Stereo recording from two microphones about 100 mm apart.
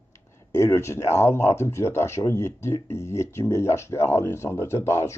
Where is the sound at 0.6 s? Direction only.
25° left (ahead or behind).